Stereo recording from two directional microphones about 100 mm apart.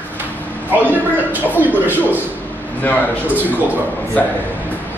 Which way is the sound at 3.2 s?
20° right (ahead or behind).